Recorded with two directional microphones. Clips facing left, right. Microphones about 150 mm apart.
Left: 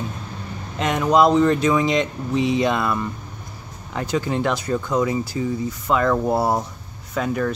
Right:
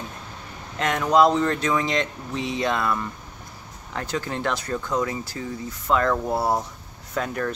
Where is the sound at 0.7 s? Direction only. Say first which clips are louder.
Left 2 dB; 15° left (ahead or behind).